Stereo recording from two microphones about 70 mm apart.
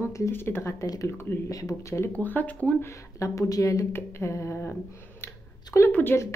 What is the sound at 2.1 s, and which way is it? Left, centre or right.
Speech, left.